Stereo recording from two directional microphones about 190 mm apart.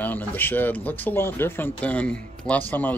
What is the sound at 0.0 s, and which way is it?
Speech, 10° left (ahead or behind).